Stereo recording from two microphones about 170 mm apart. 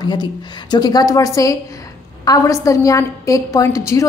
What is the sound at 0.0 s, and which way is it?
A woman's voice, 25° left (ahead or behind).